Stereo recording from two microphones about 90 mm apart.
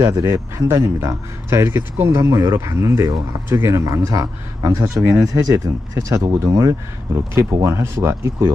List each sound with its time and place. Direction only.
0.0 s speech: 35° right (ahead or behind)
4.0 s speech: 40° right (ahead or behind)